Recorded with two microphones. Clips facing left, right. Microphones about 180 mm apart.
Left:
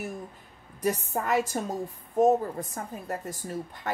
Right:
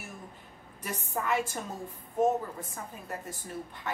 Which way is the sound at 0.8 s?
40° left (ahead or behind).